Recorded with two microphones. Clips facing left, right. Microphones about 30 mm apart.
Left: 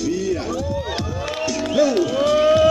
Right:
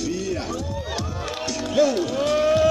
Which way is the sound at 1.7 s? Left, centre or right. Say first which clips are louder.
Left 2 dB; centre.